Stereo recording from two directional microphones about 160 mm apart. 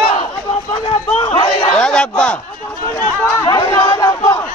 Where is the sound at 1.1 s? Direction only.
35° left (ahead or behind).